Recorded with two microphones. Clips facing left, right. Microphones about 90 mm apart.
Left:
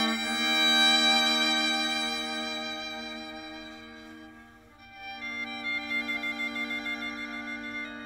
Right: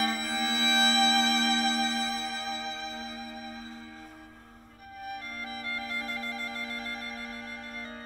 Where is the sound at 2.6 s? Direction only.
35° right (ahead or behind).